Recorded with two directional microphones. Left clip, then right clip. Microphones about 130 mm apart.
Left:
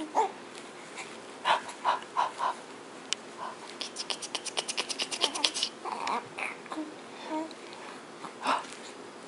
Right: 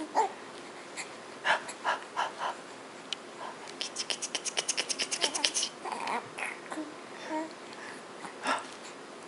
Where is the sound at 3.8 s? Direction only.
5° right (ahead or behind).